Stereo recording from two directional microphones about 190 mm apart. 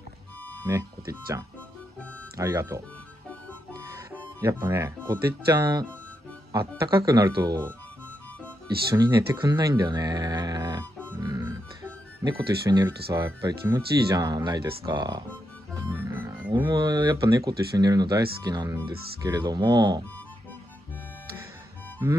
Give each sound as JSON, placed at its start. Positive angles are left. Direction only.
{"t": 2.3, "sound": "speech", "side_deg": -15}
{"t": 4.4, "sound": "speech", "side_deg": -15}
{"t": 8.9, "sound": "speech", "side_deg": -20}
{"t": 15.9, "sound": "music", "side_deg": -10}
{"t": 16.6, "sound": "speech", "side_deg": -20}